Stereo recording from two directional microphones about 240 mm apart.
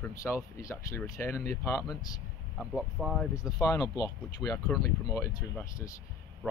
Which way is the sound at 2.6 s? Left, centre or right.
Centre.